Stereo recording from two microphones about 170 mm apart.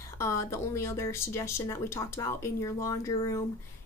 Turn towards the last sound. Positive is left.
turn(degrees=20)  # may be behind; listen again after turning